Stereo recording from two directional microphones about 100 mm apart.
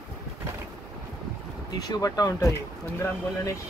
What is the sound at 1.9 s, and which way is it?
Speech, 35° left (ahead or behind).